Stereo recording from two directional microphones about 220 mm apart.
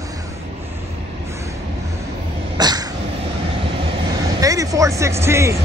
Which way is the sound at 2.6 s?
20° right (ahead or behind).